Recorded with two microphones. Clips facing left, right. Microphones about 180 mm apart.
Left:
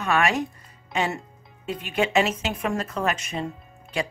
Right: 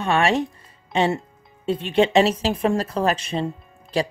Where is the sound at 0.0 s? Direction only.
30° right (ahead or behind).